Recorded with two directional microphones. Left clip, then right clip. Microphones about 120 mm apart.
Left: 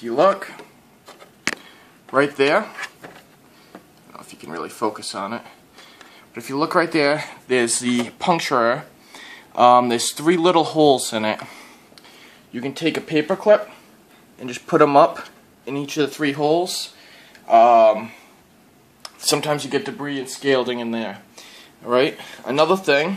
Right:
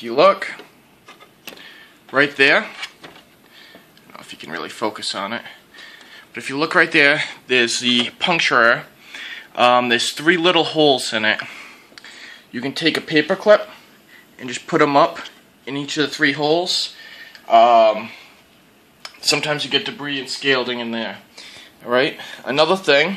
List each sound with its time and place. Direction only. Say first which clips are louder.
1.6 s a sound: right 5 dB; 5° left (ahead or behind)
4.1 s a sound: right 4 dB; 5° left (ahead or behind)
4.6 s speech: even; 5° left (ahead or behind)
7.6 s speech: right 5 dB; 30° left (ahead or behind)
11.9 s a sound: right 6 dB; centre (ahead or behind)
12.5 s speech: right 3 dB; 15° right (ahead or behind)
14.4 s speech: left 1 dB; centre (ahead or behind); by 18.1 s 20° left (ahead or behind)
19.3 s speech: right 1 dB; 40° left (ahead or behind)
20.4 s speech: even; 30° left (ahead or behind)
21.8 s speech: even; 5° left (ahead or behind)